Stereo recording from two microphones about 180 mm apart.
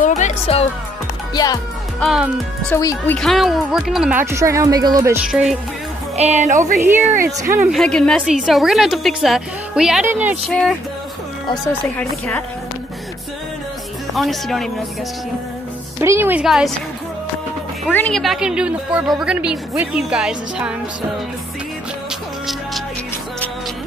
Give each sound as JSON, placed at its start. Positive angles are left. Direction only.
{"t": 0.2, "sound": "speech", "side_deg": 35}
{"t": 1.3, "sound": "speech", "side_deg": 20}
{"t": 2.0, "sound": "a woman's voice", "side_deg": 0}
{"t": 2.7, "sound": "speech", "side_deg": 15}
{"t": 3.2, "sound": "speech", "side_deg": 0}
{"t": 5.3, "sound": "a woman's voice", "side_deg": -5}
{"t": 6.1, "sound": "speech", "side_deg": -40}
{"t": 6.8, "sound": "speech", "side_deg": -10}
{"t": 7.7, "sound": "a woman's voice", "side_deg": 5}
{"t": 10.5, "sound": "a woman's voice", "side_deg": 0}
{"t": 14.1, "sound": "a woman's voice", "side_deg": 0}
{"t": 16.0, "sound": "speech", "side_deg": -15}
{"t": 17.9, "sound": "a woman's voice", "side_deg": 5}